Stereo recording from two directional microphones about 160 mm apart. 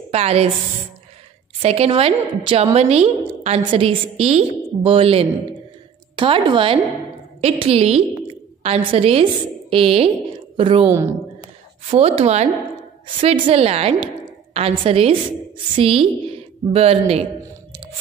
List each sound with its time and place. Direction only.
0.1 s a woman's voice: 40° right (ahead or behind)
1.6 s a woman's voice: 40° right (ahead or behind)
10.9 s a woman's voice: 15° right (ahead or behind)
11.9 s a woman's voice: 40° right (ahead or behind)